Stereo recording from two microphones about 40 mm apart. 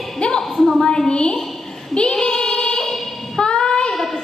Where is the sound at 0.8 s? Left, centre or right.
Left.